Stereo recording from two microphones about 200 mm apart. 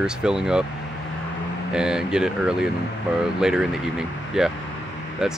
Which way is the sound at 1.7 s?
5° right (ahead or behind).